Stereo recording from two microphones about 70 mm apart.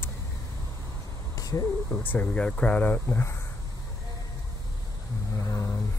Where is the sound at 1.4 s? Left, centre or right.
Left.